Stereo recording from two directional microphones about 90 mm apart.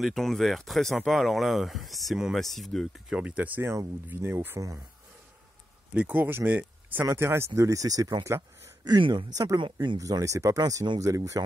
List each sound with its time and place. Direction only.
0.0 s speech: 5° left (ahead or behind)
3.2 s speech: 15° right (ahead or behind)
4.6 s speech: 35° right (ahead or behind)
5.9 s speech: 20° right (ahead or behind); by 8.1 s 40° right (ahead or behind)
8.4 s speech: 55° right (ahead or behind)
9.6 s speech: 65° right (ahead or behind)
9.9 s speech: 40° right (ahead or behind)